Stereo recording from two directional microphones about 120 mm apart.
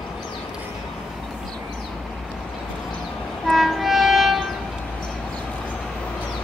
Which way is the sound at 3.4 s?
Centre (ahead or behind).